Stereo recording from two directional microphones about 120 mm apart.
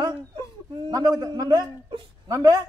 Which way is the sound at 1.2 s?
35° right (ahead or behind).